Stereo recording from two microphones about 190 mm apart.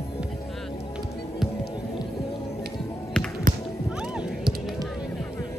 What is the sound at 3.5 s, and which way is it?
Music, 45° right (ahead or behind).